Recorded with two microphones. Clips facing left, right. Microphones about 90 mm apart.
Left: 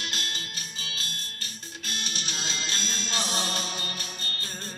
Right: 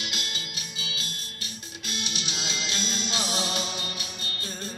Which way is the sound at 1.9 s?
45° left (ahead or behind).